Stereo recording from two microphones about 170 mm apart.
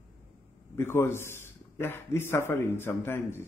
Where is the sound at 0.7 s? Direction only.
15° left (ahead or behind).